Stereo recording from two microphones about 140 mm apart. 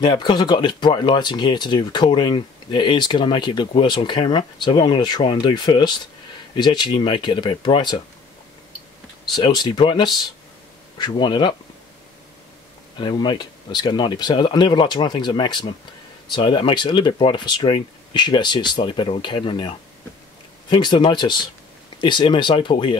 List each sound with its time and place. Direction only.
0.0 s speech: 30° left (ahead or behind)
9.3 s speech: 30° left (ahead or behind)
12.9 s speech: 35° left (ahead or behind)
20.7 s speech: 35° left (ahead or behind)